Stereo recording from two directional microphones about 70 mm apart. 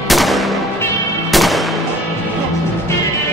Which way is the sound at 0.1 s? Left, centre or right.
Centre.